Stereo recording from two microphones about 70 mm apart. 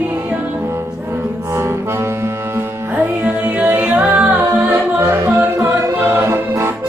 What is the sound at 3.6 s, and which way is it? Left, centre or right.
Music, right.